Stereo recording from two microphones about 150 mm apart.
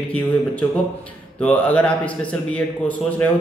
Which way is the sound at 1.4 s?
10° left (ahead or behind).